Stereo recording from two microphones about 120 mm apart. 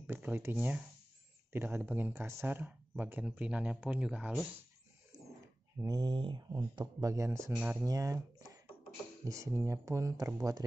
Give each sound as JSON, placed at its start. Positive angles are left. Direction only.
{"t": 0.0, "sound": "speech", "side_deg": -15}
{"t": 5.1, "sound": "a sound", "side_deg": -35}
{"t": 5.8, "sound": "speech", "side_deg": -30}
{"t": 7.5, "sound": "speech", "side_deg": -10}
{"t": 7.8, "sound": "speech", "side_deg": -30}